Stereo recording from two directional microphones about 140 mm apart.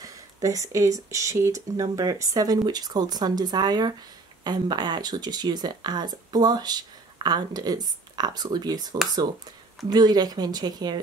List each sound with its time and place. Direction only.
0.0 s speech: 25° right (ahead or behind)